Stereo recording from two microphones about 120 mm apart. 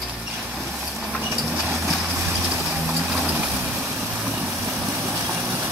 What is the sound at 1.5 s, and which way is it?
Vehicle, 15° right (ahead or behind).